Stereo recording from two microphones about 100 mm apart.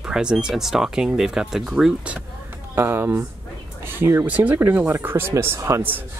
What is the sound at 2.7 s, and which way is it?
Speech, 25° right (ahead or behind).